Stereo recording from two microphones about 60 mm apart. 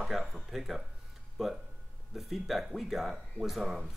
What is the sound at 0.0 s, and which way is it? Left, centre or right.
Speech, centre.